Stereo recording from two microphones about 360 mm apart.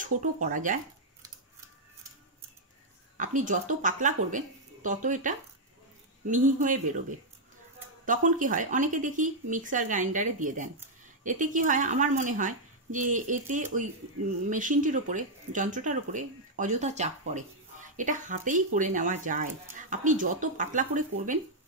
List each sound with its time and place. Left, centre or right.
0.2 s speech: right
3.2 s speech: right